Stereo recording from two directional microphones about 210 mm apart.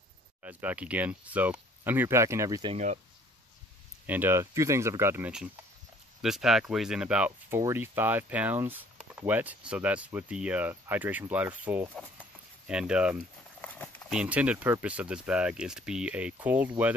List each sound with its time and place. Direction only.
0.4 s speech: 5° right (ahead or behind)
2.7 s speech: 35° right (ahead or behind)
4.0 s speech: 10° right (ahead or behind)
13.6 s a sound: 5° left (ahead or behind)
14.1 s speech: 5° right (ahead or behind)